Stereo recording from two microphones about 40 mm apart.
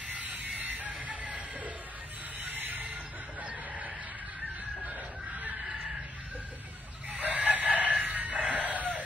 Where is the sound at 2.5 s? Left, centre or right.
Right.